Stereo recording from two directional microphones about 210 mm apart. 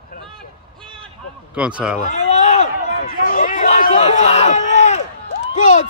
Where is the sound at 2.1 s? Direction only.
35° left (ahead or behind).